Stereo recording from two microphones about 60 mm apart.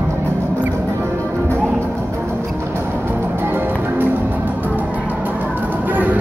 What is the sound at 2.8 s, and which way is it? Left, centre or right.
Music, right.